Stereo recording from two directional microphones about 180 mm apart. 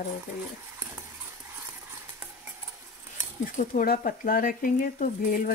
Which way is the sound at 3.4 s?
50° left (ahead or behind).